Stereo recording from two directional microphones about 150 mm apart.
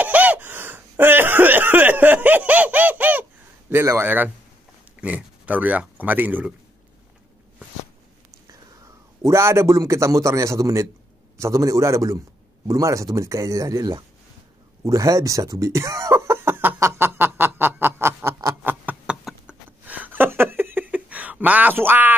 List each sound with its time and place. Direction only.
0.0 s a sound: 10° right (ahead or behind)
3.7 s a man's voice: 15° right (ahead or behind)
9.2 s a man's voice: 15° right (ahead or behind)
14.9 s cough: 20° right (ahead or behind)